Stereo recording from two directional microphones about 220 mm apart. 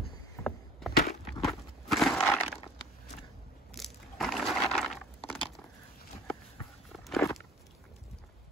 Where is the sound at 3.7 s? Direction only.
Centre (ahead or behind).